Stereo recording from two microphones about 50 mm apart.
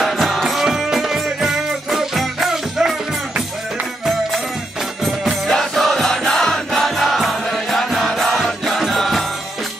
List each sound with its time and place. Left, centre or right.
0.0 s music: centre
5.0 s music: centre